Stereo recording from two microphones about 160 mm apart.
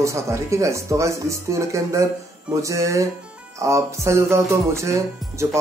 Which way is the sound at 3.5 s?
20° right (ahead or behind).